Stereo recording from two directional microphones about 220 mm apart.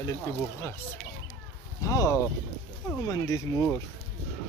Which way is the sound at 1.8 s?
15° left (ahead or behind).